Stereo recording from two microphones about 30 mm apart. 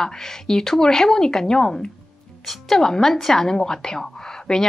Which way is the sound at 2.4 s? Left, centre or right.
Centre.